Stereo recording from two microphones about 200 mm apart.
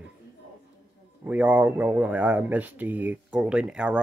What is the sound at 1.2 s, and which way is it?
Speech, 5° right (ahead or behind).